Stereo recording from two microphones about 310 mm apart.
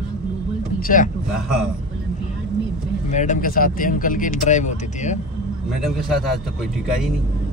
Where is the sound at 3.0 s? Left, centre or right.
Left.